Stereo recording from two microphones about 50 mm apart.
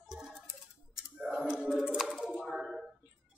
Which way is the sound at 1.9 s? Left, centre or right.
Centre.